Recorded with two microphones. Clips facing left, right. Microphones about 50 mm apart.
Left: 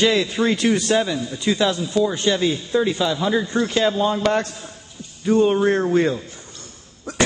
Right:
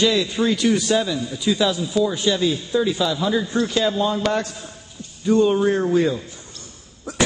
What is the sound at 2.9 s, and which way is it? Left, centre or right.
A man's voice, centre.